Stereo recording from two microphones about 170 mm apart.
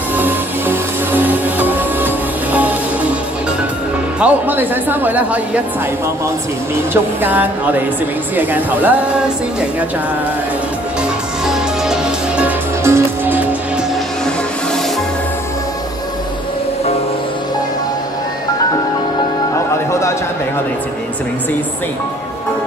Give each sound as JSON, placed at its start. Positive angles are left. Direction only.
{"t": 0.1, "sound": "music", "side_deg": -10}
{"t": 4.2, "sound": "speech", "side_deg": -10}
{"t": 6.9, "sound": "speech", "side_deg": -10}
{"t": 11.4, "sound": "music", "side_deg": -5}
{"t": 19.9, "sound": "a sound", "side_deg": 15}